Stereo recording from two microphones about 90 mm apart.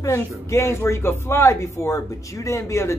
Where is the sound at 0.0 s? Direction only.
30° left (ahead or behind).